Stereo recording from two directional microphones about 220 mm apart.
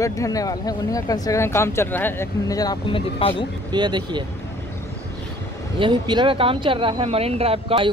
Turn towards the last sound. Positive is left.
turn(degrees=-25)  # may be behind; listen again after turning